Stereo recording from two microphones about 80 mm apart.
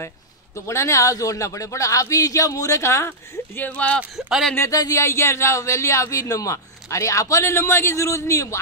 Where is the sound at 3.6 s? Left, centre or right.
Centre.